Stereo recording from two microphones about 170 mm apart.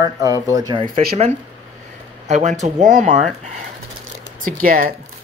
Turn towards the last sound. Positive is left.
turn(degrees=-55)  # may be behind; listen again after turning